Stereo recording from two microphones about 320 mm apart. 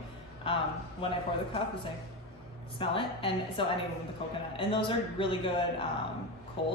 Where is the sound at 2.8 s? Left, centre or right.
Centre.